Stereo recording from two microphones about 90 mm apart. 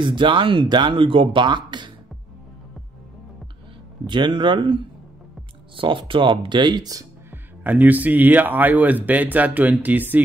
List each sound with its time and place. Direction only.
0.0 s speech: 60° right (ahead or behind)
4.0 s speech: 60° right (ahead or behind); by 7.1 s 45° right (ahead or behind)
7.2 s speech: 20° right (ahead or behind)